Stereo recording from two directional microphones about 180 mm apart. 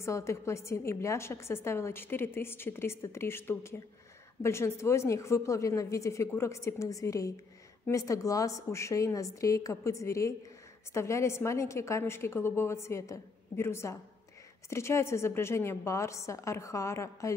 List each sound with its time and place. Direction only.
0.0 s a woman's voice: 15° left (ahead or behind)